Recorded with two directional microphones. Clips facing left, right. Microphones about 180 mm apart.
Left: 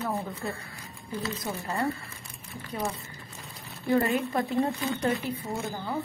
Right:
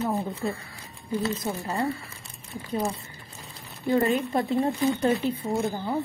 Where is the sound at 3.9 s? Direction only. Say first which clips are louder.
Right 2 dB; 20° right (ahead or behind).